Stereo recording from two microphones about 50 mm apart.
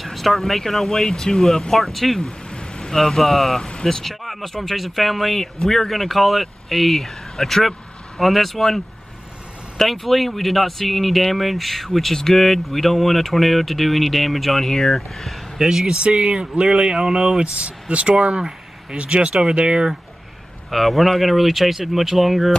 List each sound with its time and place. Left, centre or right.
0.0 s speech: centre
2.5 s speech: centre
20.7 s speech: centre